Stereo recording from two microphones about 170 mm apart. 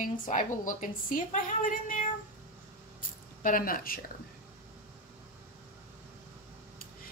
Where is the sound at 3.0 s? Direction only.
55° left (ahead or behind).